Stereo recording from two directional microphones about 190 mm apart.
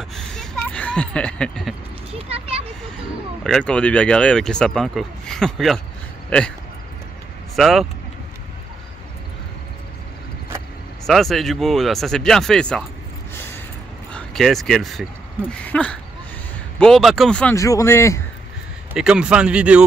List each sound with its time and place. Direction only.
0.1 s a sound: centre (ahead or behind)
2.1 s a child's voice: 30° right (ahead or behind)
3.4 s speech: 5° left (ahead or behind)
7.5 s speech: centre (ahead or behind)
11.1 s speech: centre (ahead or behind)
13.3 s a sound: 10° left (ahead or behind)
14.1 s speech: centre (ahead or behind)
17.6 s speech: 15° left (ahead or behind)
18.9 s speech: 5° right (ahead or behind)